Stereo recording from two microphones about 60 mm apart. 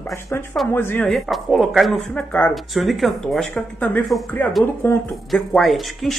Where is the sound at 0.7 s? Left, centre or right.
Left.